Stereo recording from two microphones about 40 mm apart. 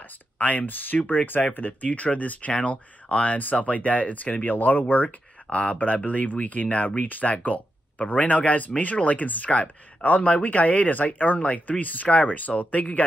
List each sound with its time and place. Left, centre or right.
0.0 s speech: left
1.5 s speech: left
11.3 s speech: left